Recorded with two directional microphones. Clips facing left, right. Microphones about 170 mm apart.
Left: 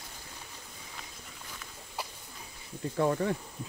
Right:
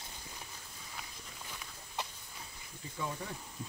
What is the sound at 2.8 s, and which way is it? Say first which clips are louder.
Speech: left 13 dB; 70° left (ahead or behind).